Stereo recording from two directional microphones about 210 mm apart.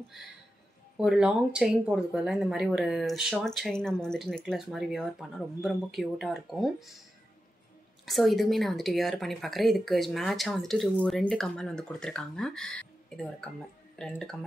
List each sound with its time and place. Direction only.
0.9 s a woman's voice: 5° right (ahead or behind)
8.0 s a woman's voice: centre (ahead or behind)